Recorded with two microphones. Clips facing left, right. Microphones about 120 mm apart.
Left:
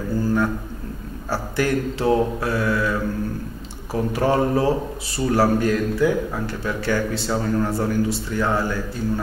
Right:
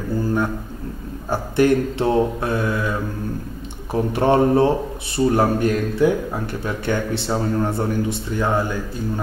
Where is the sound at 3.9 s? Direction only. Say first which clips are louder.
Right 3 dB; 25° right (ahead or behind).